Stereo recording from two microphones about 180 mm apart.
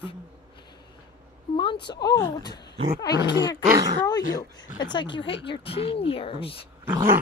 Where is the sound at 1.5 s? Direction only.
30° left (ahead or behind).